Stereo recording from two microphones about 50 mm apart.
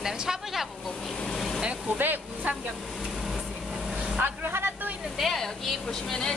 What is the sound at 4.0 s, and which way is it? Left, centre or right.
Vehicle, right.